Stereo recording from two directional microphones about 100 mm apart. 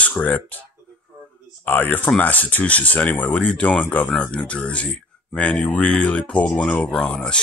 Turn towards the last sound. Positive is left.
turn(degrees=10)  # may be behind; listen again after turning